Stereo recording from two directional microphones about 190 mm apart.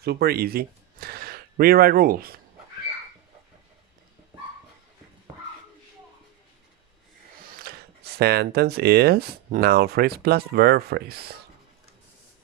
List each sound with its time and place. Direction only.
0.0 s speech: 55° right (ahead or behind)
7.6 s speech: 55° right (ahead or behind)